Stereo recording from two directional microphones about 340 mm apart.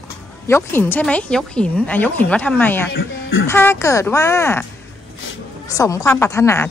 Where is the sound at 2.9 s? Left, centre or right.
Left.